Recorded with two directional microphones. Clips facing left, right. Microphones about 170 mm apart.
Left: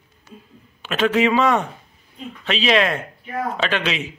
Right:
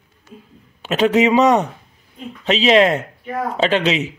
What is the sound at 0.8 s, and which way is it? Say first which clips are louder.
Speech: right 3 dB; 25° right (ahead or behind).